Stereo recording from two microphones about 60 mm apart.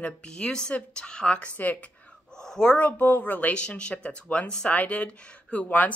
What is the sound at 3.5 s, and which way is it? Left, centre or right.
Speech, centre.